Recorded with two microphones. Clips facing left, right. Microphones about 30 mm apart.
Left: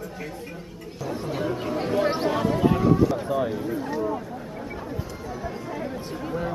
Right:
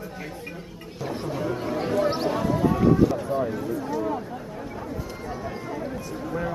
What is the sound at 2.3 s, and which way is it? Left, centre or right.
Speech, left.